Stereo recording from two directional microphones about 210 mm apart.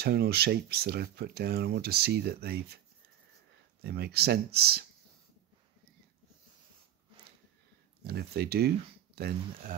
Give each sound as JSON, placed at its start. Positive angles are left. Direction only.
{"t": 0.0, "sound": "speech", "side_deg": -50}
{"t": 3.8, "sound": "speech", "side_deg": -50}
{"t": 8.0, "sound": "speech", "side_deg": -50}